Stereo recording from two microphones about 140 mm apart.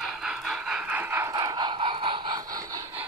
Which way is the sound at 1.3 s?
30° right (ahead or behind).